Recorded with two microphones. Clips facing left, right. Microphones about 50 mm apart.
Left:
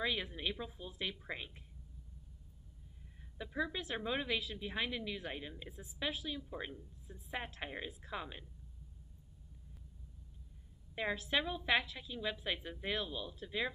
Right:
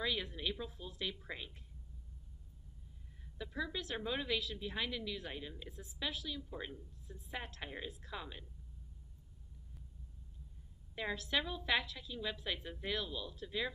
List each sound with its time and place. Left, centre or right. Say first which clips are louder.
0.0 s a woman's voice: left 1 dB; centre
3.5 s a woman's voice: left 2 dB; left
11.0 s a woman's voice: left 2 dB; centre